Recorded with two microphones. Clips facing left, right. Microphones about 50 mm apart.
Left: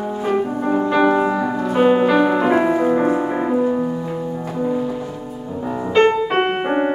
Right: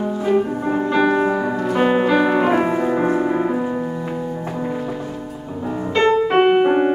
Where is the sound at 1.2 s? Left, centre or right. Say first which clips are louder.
Even; centre.